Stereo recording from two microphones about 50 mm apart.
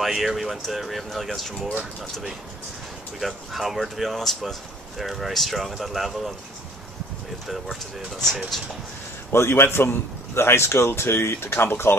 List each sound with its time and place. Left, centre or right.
0.0 s speech: centre
3.2 s speech: centre
7.4 s speech: centre
9.3 s a man's voice: left